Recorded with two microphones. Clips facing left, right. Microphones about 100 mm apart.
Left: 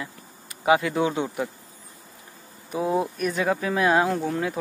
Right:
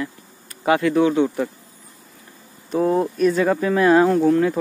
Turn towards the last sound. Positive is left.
turn(degrees=5)  # may be behind; listen again after turning